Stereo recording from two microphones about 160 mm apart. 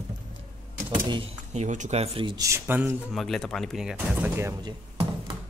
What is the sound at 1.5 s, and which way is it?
Speech, 50° right (ahead or behind).